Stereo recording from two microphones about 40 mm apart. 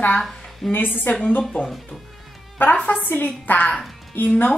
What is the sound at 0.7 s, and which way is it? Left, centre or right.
Speech, left.